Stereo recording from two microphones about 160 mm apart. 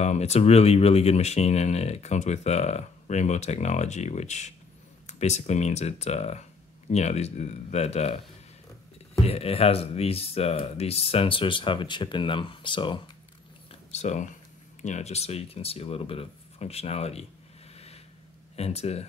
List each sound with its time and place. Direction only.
0.0 s speech: 45° left (ahead or behind)
9.2 s speech: 40° left (ahead or behind)
13.7 s a sound: 45° left (ahead or behind)
14.8 s speech: 45° left (ahead or behind)
18.6 s speech: 40° left (ahead or behind)